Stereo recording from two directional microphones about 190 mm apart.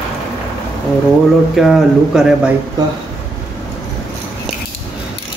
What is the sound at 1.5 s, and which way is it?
Speech, centre (ahead or behind).